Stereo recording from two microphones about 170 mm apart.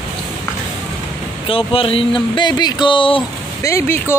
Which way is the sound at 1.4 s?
30° left (ahead or behind).